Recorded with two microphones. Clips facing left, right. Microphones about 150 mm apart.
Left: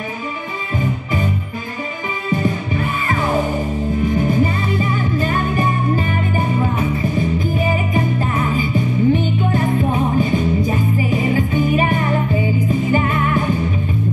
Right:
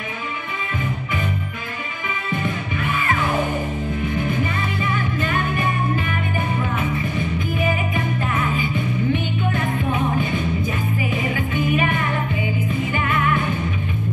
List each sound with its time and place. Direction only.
2.3 s music: 35° left (ahead or behind)
4.2 s music: 35° left (ahead or behind)